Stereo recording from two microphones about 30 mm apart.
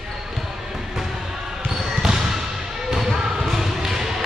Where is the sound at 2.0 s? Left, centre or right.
Centre.